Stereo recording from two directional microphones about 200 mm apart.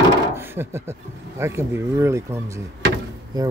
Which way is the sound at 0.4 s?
10° right (ahead or behind).